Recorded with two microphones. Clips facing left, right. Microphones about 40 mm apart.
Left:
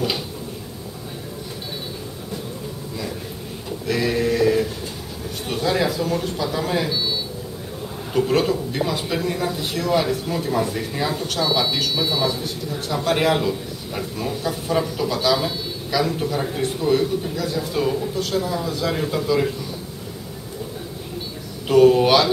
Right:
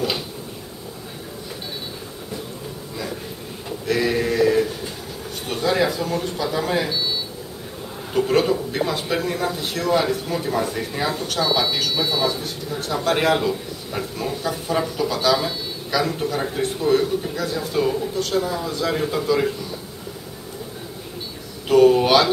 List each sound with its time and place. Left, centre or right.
3.8 s male singing: centre
5.5 s a man's voice: centre
21.6 s a sound: centre